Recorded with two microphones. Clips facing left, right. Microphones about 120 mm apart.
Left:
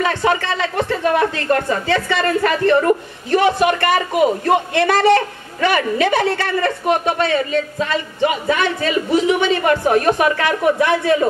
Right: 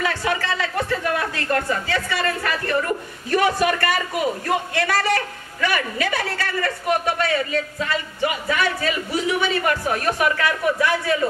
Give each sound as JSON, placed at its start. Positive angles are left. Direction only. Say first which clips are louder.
{"t": 0.0, "sound": "a sound", "louder": "left 6 dB", "side_deg": 25}
{"t": 1.5, "sound": "a woman's voice", "louder": "left 2 dB", "side_deg": 40}
{"t": 2.0, "sound": "speech", "louder": "left 7 dB", "side_deg": 25}